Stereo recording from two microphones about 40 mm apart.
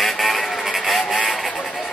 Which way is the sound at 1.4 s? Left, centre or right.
Centre.